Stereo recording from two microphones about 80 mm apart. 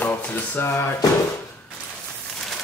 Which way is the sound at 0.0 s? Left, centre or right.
Left.